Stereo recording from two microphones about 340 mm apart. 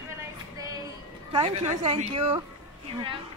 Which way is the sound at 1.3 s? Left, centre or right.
Centre.